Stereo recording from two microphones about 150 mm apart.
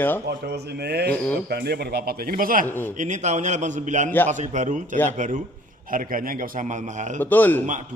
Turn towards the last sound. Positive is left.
turn(degrees=10)  # may be behind; listen again after turning